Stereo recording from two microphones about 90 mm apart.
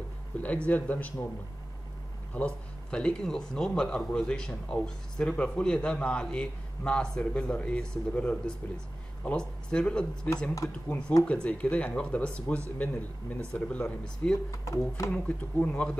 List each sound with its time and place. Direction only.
0.3 s a sound: 15° left (ahead or behind)
0.7 s a man's voice: 15° left (ahead or behind)
2.3 s a man's voice: 10° left (ahead or behind)
14.6 s speech: 35° left (ahead or behind)
15.2 s a man's voice: 15° left (ahead or behind)